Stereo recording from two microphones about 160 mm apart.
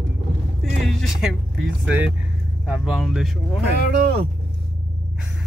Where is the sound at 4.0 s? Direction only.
90° right.